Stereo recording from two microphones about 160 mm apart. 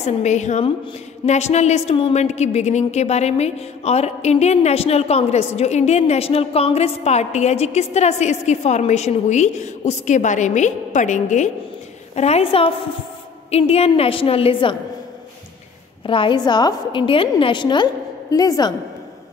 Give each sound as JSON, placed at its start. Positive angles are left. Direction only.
{"t": 0.0, "sound": "a woman's voice", "side_deg": 45}
{"t": 16.1, "sound": "a woman's voice", "side_deg": 30}